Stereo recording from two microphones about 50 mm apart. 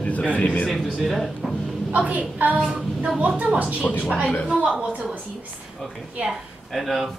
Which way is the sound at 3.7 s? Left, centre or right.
Left.